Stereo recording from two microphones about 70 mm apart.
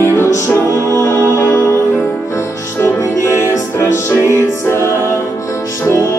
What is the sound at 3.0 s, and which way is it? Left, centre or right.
Music, left.